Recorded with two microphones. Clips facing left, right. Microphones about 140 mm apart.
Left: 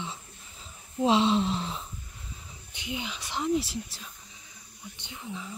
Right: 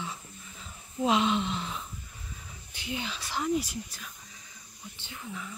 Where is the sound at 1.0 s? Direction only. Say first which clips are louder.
Left 3 dB; 30° left (ahead or behind).